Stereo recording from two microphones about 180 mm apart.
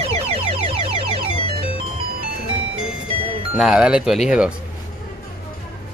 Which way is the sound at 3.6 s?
5° right (ahead or behind).